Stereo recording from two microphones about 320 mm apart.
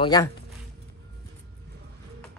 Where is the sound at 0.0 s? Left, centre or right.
Centre.